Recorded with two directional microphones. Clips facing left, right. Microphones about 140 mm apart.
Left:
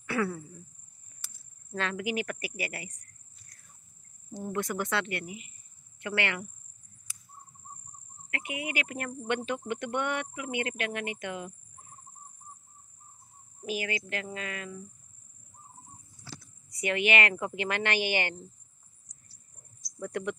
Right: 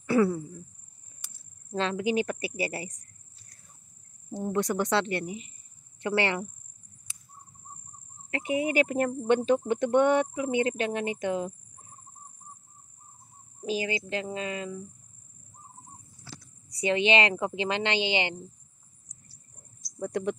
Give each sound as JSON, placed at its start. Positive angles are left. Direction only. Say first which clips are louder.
{"t": 0.0, "sound": "a sound", "louder": "right 7 dB", "side_deg": -35}
{"t": 1.2, "sound": "speech", "louder": "even", "side_deg": -25}
{"t": 4.6, "sound": "speech", "louder": "right 5 dB", "side_deg": -35}
{"t": 7.1, "sound": "a sound", "louder": "left 1 dB", "side_deg": -25}
{"t": 8.3, "sound": "speech", "louder": "right 9 dB", "side_deg": -35}
{"t": 13.6, "sound": "a woman's voice", "louder": "right 4 dB", "side_deg": -25}
{"t": 16.8, "sound": "a woman's voice", "louder": "right 4 dB", "side_deg": -25}
{"t": 20.0, "sound": "speech", "louder": "right 4 dB", "side_deg": -35}